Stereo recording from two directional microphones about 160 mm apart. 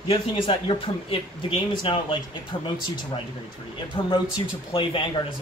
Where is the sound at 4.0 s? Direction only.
30° left (ahead or behind).